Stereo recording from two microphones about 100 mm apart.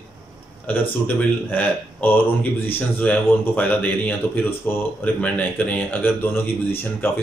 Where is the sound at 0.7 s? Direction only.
15° left (ahead or behind).